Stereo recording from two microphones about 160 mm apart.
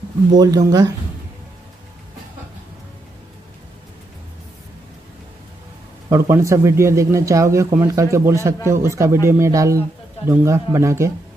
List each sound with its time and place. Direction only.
0.4 s speech: 20° right (ahead or behind)
6.0 s speech: 15° right (ahead or behind)